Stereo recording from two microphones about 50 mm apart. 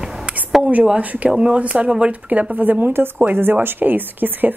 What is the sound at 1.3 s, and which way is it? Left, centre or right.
Speech, centre.